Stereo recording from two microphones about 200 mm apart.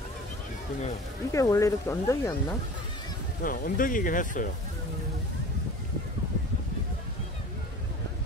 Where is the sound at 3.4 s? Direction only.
45° left (ahead or behind).